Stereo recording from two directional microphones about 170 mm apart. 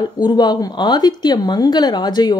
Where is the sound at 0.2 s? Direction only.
25° left (ahead or behind).